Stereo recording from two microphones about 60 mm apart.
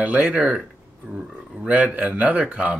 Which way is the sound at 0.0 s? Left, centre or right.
Right.